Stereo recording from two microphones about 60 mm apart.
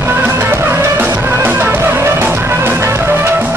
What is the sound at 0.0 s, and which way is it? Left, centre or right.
Music, right.